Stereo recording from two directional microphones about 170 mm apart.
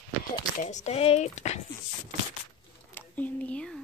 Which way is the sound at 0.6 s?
45° left (ahead or behind).